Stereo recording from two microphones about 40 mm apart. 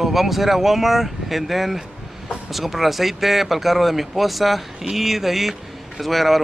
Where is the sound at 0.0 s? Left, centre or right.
Centre.